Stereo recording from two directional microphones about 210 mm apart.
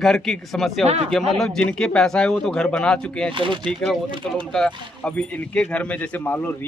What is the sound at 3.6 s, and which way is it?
Speech, centre (ahead or behind).